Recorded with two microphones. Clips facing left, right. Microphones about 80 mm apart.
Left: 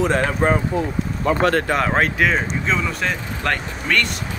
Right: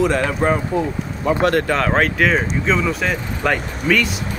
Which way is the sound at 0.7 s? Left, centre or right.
Right.